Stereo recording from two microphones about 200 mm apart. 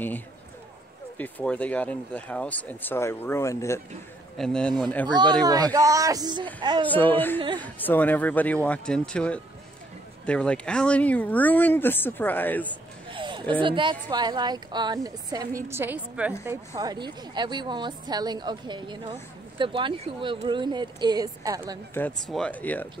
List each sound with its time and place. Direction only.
1.1 s speech: 5° left (ahead or behind)
5.0 s a woman's voice: 20° right (ahead or behind)
6.9 s speech: 10° left (ahead or behind)
7.3 s a woman's voice: 25° right (ahead or behind)
7.6 s speech: 10° left (ahead or behind)
13.1 s a sound: 25° right (ahead or behind)
13.6 s a woman's voice: 25° right (ahead or behind)
21.9 s speech: 5° left (ahead or behind)